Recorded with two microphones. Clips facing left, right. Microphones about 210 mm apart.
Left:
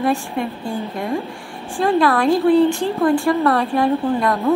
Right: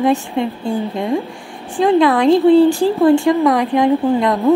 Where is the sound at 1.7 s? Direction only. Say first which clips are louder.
Right 4 dB; 20° right (ahead or behind).